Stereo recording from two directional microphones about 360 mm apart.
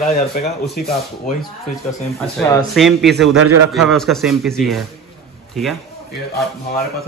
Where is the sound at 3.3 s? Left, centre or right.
Right.